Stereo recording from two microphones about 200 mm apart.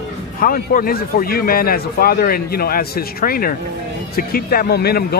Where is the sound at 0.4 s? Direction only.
45° left (ahead or behind).